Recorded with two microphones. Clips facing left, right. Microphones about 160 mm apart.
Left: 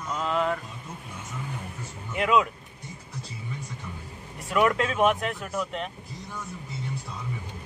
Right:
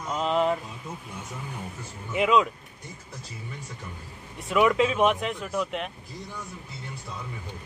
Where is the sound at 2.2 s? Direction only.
5° left (ahead or behind).